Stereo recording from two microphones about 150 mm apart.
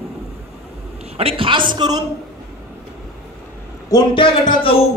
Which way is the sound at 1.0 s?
40° right (ahead or behind).